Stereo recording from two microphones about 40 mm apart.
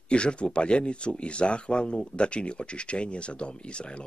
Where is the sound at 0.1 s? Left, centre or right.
Left.